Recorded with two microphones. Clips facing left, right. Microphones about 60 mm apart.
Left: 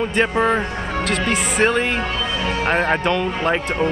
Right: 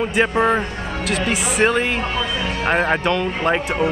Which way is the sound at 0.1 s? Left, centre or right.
Centre.